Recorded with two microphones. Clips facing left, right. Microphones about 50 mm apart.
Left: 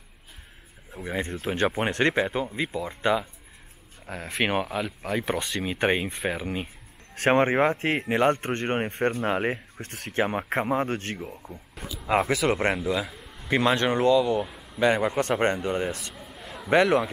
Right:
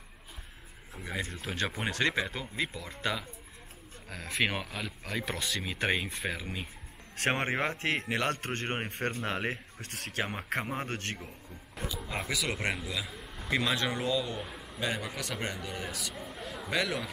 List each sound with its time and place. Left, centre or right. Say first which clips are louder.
0.9 s speech: left 7 dB; left
1.9 s speech: left 6 dB; left
8.6 s speech: left 9 dB; centre
9.8 s speech: left 8 dB; left
10.3 s speech: left 8 dB; centre
12.1 s speech: left 14 dB; left
12.4 s speech: left 9 dB; left
14.8 s speech: left 12 dB; left
16.1 s a sound: right 1 dB; centre
16.7 s speech: left 12 dB; left